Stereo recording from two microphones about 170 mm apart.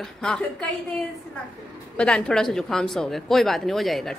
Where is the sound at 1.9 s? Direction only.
5° left (ahead or behind).